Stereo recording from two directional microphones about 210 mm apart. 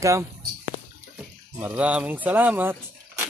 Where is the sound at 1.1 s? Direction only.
5° right (ahead or behind).